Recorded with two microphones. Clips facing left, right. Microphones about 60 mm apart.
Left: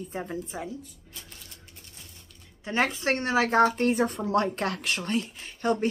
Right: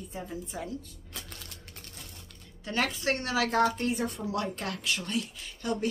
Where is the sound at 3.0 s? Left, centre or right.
Left.